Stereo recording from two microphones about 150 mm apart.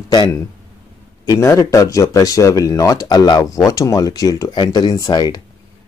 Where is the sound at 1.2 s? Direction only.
20° left (ahead or behind).